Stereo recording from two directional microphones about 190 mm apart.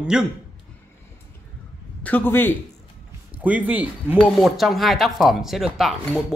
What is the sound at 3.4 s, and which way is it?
Speech, 5° right (ahead or behind).